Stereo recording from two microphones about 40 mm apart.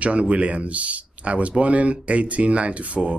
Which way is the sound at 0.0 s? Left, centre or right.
Right.